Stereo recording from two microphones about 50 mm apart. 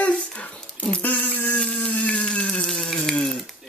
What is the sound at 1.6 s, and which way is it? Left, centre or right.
Water, left.